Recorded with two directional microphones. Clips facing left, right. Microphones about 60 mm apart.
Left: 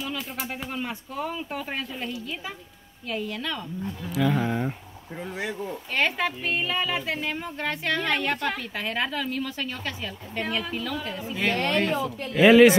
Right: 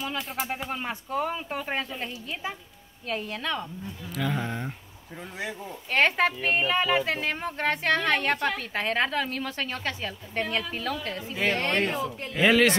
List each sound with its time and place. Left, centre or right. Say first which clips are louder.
0.2 s speech: right 2 dB; centre
0.8 s speech: right 3 dB; right
3.2 s speech: left 1 dB; right
4.1 s speech: left 5 dB; centre
5.1 s speech: left 5 dB; centre
5.9 s speech: right 3 dB; right
10.4 s speech: even; centre
10.8 s speech: even; right
11.4 s speech: left 1 dB; right
12.4 s speech: left 6 dB; centre